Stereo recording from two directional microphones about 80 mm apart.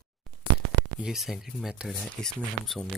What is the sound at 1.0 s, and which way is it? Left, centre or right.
Speech, centre.